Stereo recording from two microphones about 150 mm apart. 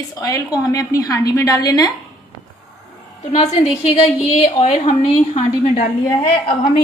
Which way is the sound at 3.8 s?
45° left (ahead or behind).